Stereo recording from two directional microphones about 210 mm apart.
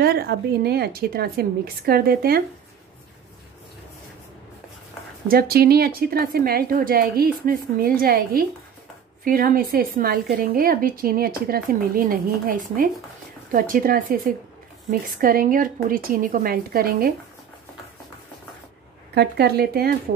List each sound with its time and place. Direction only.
0.0 s a woman's voice: 45° right (ahead or behind)
5.3 s a woman's voice: 45° right (ahead or behind)
19.1 s a woman's voice: 50° right (ahead or behind)